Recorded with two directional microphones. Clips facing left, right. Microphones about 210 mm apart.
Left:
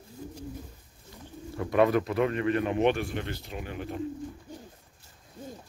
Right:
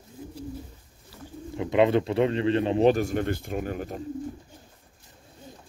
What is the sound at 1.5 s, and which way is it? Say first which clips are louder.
Speech: right 2 dB; 20° right (ahead or behind).